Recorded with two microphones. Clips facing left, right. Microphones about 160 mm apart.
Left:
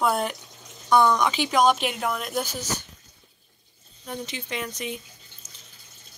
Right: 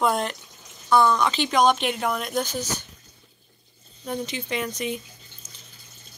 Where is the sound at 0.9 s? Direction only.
15° left (ahead or behind); by 2.4 s centre (ahead or behind).